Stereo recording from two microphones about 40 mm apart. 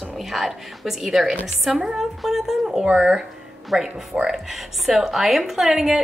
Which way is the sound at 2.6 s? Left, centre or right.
Centre.